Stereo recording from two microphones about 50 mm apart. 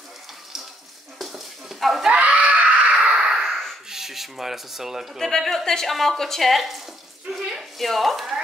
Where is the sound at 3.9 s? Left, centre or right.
Centre.